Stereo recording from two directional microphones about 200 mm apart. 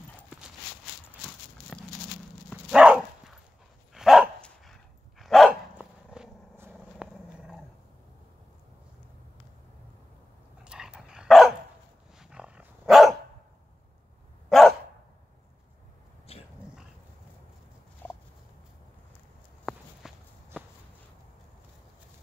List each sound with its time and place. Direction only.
1.7 s a sound: centre (ahead or behind)
2.5 s dog: 5° right (ahead or behind)
10.6 s dog: 5° right (ahead or behind)
14.5 s bark: centre (ahead or behind)
16.3 s dog: 30° left (ahead or behind)
18.0 s a sound: 10° left (ahead or behind)
19.6 s walk: centre (ahead or behind)